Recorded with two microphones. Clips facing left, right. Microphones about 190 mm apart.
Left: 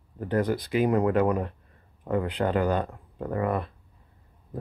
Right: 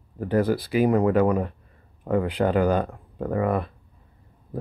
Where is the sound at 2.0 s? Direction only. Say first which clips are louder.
Right 4 dB; 15° right (ahead or behind).